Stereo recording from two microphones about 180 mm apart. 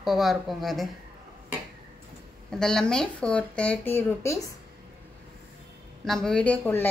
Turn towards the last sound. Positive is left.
turn(degrees=10)  # may be behind; listen again after turning